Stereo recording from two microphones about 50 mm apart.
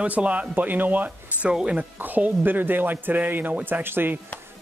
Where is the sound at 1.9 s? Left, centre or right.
Right.